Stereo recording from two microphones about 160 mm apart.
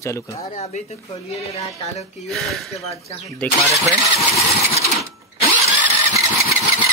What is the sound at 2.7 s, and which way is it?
Speech, 40° left (ahead or behind).